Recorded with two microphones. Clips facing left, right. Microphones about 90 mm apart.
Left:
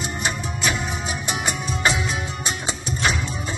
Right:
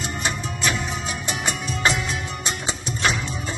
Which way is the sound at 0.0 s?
15° left (ahead or behind).